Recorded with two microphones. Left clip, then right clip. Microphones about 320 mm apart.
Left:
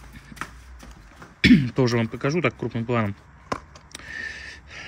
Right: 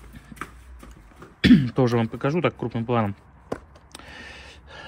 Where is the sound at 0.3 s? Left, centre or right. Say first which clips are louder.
Left 2 dB; left.